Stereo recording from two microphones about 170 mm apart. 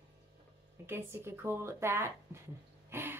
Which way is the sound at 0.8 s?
15° right (ahead or behind).